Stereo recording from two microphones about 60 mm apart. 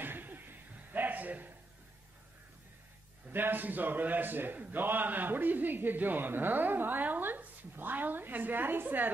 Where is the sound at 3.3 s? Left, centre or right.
Right.